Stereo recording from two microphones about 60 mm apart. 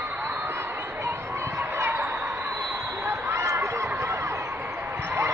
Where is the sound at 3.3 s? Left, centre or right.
Right.